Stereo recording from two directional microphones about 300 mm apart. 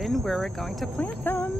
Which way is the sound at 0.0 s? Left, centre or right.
Centre.